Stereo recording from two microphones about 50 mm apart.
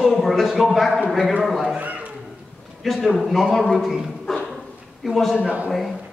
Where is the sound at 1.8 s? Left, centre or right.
Right.